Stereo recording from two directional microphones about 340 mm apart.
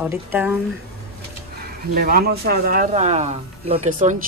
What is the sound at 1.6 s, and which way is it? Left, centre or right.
Speech, right.